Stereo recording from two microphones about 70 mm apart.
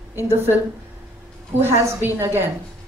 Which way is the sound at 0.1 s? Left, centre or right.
Right.